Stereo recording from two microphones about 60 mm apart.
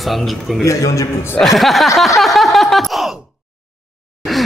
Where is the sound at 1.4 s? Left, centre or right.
Centre.